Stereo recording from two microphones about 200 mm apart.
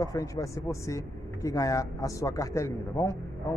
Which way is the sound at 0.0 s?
15° left (ahead or behind).